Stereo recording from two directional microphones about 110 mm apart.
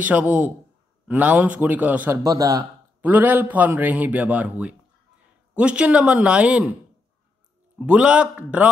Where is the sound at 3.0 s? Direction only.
15° right (ahead or behind).